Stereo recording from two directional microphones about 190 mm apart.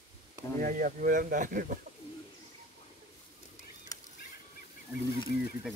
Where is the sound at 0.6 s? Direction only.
45° right (ahead or behind).